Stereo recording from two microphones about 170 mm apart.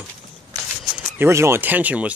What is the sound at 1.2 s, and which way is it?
Speech, 15° right (ahead or behind).